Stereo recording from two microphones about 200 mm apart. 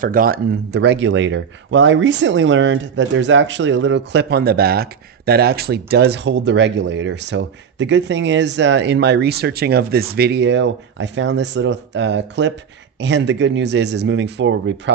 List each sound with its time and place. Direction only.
0.0 s speech: 45° right (ahead or behind); by 14.8 s 65° right (ahead or behind)